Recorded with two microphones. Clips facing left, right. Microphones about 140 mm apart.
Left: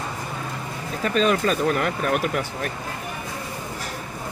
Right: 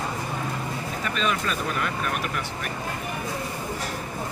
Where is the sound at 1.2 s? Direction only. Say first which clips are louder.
Left 7 dB; 40° left (ahead or behind).